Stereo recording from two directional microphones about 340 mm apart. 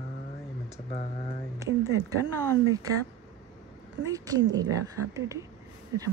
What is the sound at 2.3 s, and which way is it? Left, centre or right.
Speech, centre.